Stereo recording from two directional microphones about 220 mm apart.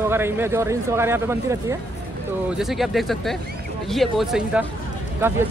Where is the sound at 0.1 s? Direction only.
10° right (ahead or behind).